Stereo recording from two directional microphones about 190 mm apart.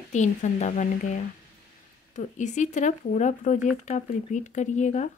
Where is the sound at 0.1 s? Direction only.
40° left (ahead or behind).